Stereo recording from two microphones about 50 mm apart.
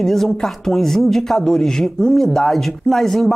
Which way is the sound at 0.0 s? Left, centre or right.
Centre.